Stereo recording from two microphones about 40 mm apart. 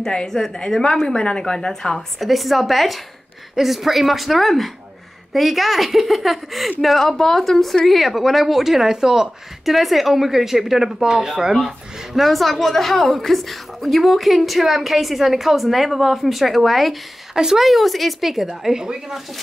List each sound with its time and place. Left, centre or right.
0.0 s a woman's voice: centre
2.0 s a woman's voice: centre
9.7 s a woman's voice: centre